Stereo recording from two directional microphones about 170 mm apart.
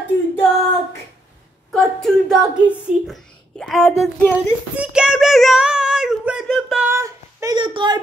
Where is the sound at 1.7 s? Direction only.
Centre (ahead or behind).